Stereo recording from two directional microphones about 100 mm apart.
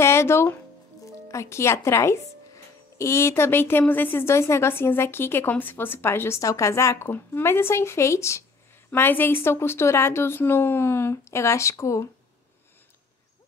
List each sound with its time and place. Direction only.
0.0 s speech: 25° left (ahead or behind)